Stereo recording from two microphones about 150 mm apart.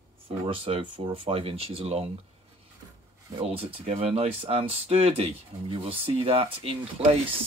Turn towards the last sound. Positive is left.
turn(degrees=-40)  # may be behind; listen again after turning